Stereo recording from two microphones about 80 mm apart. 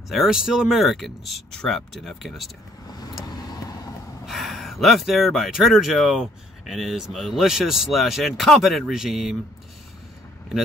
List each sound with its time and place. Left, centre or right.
0.1 s speech: centre
2.9 s vehicle: left
4.3 s speech: centre